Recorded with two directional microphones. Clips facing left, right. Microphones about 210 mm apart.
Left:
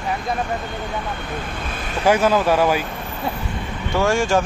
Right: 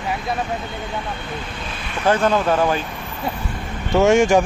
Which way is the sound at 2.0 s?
10° left (ahead or behind).